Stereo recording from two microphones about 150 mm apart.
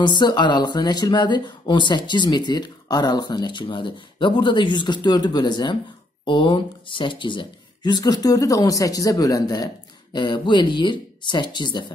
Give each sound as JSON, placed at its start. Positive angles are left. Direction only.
{"t": 0.0, "sound": "speech", "side_deg": 30}